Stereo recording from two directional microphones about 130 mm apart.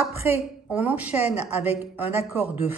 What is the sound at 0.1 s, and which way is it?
A woman's voice, 15° right (ahead or behind).